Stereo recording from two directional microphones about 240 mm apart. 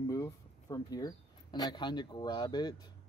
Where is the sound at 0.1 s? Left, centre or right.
Centre.